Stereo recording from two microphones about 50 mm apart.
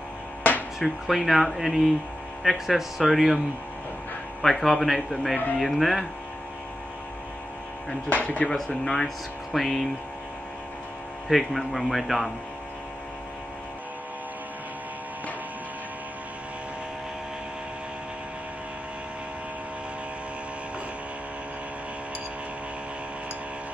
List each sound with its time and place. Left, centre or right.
0.4 s a sound: left
0.7 s speech: centre
4.4 s speech: centre
8.1 s speech: left
8.6 s speech: centre
11.2 s speech: centre